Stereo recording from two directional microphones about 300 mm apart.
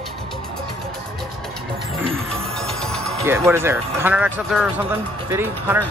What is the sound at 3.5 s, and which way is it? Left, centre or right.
Speech, centre.